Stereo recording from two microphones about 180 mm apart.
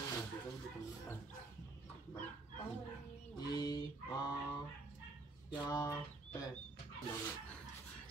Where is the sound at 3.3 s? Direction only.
20° left (ahead or behind).